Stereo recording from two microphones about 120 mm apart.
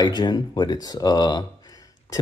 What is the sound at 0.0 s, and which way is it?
Speech, 35° left (ahead or behind).